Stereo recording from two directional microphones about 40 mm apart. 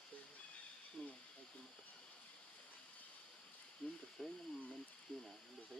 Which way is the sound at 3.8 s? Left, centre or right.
Left.